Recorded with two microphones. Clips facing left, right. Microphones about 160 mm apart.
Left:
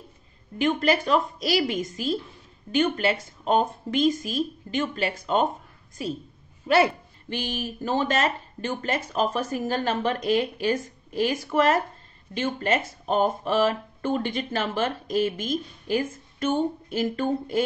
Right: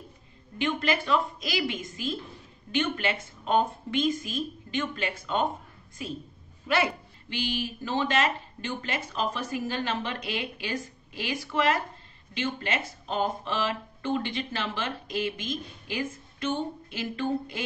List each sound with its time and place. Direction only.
0.6 s a woman's voice: 40° left (ahead or behind)
6.7 s speech: 35° left (ahead or behind)
7.2 s speech: 45° left (ahead or behind)